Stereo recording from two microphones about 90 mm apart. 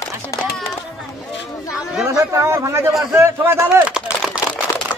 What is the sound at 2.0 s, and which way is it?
Speech, 30° right (ahead or behind).